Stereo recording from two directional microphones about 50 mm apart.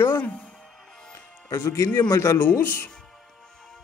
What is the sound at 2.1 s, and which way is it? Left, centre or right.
Speech, left.